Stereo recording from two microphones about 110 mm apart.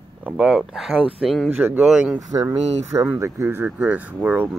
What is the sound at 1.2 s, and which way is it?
Speech, 5° left (ahead or behind).